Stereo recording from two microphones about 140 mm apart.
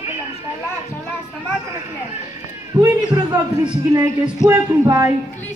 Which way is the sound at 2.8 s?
20° right (ahead or behind).